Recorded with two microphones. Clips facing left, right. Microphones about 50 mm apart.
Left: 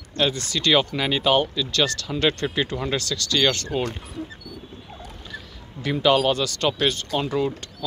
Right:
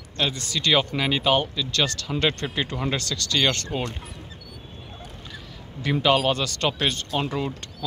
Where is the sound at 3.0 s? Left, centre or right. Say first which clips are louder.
Left 2 dB; right.